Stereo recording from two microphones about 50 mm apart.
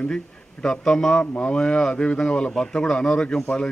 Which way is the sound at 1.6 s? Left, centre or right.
Centre.